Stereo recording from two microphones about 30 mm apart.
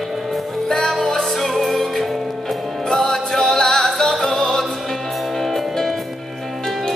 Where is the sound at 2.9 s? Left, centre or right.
Centre.